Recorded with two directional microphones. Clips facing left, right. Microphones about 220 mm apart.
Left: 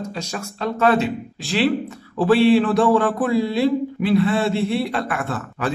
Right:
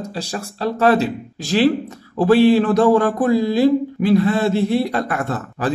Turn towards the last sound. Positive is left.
turn(degrees=-40)  # may be behind; listen again after turning